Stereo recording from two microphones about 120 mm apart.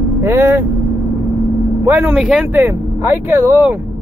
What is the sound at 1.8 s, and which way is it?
Speech, 15° right (ahead or behind).